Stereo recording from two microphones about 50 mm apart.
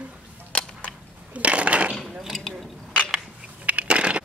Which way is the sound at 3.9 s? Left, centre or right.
Right.